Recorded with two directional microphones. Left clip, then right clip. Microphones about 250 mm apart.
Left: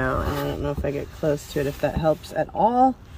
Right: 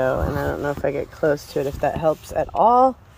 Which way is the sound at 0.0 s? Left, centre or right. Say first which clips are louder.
Right 4 dB; right.